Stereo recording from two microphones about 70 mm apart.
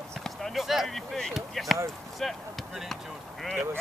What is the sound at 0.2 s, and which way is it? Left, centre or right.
Speech, centre.